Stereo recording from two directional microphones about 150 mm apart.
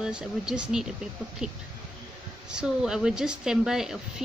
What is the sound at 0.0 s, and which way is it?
A woman's voice, 5° right (ahead or behind).